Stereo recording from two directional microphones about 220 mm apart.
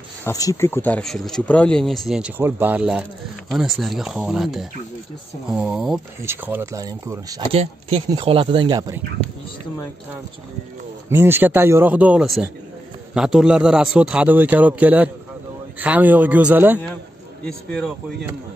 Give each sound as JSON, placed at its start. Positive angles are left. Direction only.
{"t": 0.2, "sound": "speech", "side_deg": 15}
{"t": 11.1, "sound": "speech", "side_deg": -10}
{"t": 17.5, "sound": "speech", "side_deg": 5}